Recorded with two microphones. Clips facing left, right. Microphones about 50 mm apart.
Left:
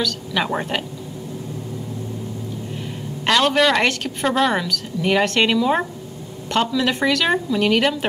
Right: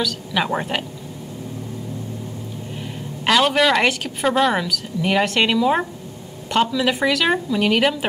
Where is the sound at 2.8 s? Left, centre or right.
Centre.